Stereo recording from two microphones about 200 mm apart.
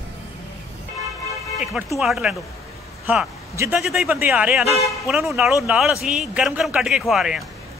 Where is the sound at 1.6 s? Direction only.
Centre (ahead or behind).